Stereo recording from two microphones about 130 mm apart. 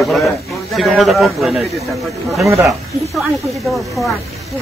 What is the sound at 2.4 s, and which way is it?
Speech, 20° right (ahead or behind).